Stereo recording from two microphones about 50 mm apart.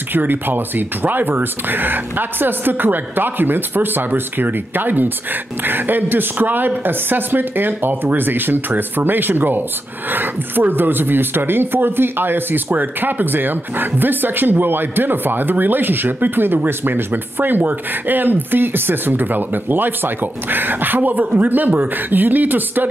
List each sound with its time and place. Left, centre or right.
0.1 s speech: right